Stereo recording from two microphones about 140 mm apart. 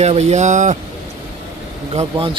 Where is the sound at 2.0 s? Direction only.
40° right (ahead or behind).